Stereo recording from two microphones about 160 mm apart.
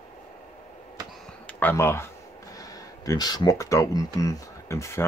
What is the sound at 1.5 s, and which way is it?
Speech, 15° left (ahead or behind).